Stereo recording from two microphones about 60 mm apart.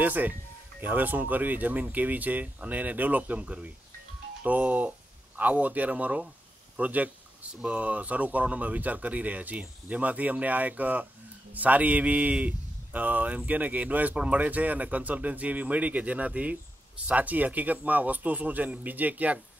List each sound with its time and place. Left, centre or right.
0.0 s speech: right